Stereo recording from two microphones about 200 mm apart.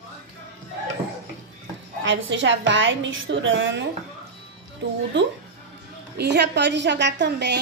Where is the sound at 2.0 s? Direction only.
65° right (ahead or behind).